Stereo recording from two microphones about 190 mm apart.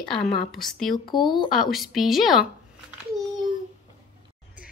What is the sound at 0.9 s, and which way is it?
Speech, 25° left (ahead or behind).